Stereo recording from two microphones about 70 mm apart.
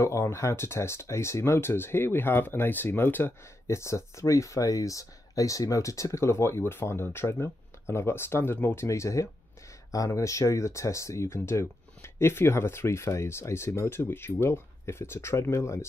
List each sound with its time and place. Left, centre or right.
0.0 s speech: left
3.6 s speech: left
8.8 s speech: left
9.8 s speech: left